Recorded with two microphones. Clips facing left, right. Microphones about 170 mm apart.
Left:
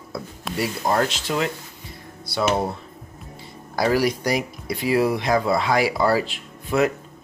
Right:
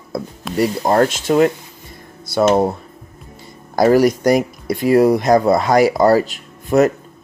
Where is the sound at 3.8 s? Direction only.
45° right (ahead or behind).